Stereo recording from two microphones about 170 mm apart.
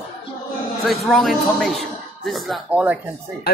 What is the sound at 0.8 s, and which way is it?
Speech, centre (ahead or behind).